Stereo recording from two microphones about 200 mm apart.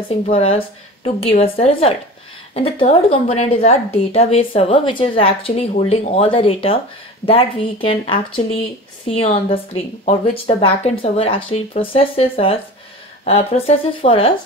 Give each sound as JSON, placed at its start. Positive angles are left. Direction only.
{"t": 0.1, "sound": "a woman's voice", "side_deg": 30}